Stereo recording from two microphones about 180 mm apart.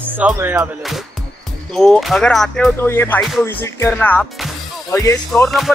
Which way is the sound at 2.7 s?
15° left (ahead or behind).